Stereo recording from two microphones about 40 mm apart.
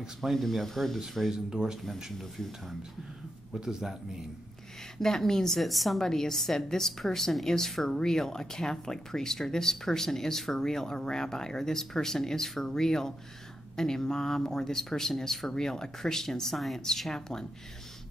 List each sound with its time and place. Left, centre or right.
0.2 s speech: centre
1.3 s a man's voice: centre
3.5 s a man's voice: centre
4.9 s speech: centre
5.6 s speech: centre
6.0 s speech: centre